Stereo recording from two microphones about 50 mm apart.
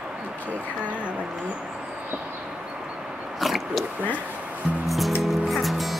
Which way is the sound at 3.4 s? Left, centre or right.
Centre.